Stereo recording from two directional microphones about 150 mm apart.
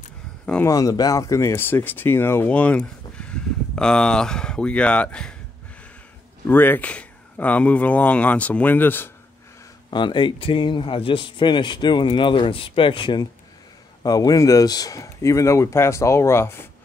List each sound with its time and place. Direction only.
0.7 s speech: 25° left (ahead or behind); by 5.3 s 5° left (ahead or behind)
6.4 s speech: 15° left (ahead or behind)
9.8 s speech: 30° left (ahead or behind)